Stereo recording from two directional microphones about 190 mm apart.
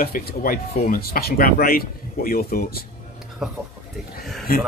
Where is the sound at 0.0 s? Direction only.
50° left (ahead or behind).